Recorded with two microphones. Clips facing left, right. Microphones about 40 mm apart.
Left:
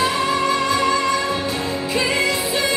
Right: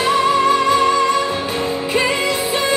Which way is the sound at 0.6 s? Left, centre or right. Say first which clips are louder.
Right 4 dB; right.